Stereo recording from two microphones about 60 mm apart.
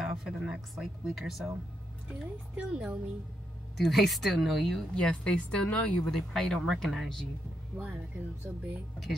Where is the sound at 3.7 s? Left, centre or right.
Centre.